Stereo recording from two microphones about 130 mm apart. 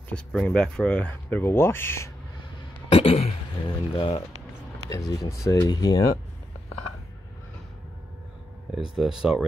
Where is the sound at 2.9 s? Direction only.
45° left (ahead or behind).